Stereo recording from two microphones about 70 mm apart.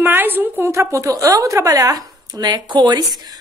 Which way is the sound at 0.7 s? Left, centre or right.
Right.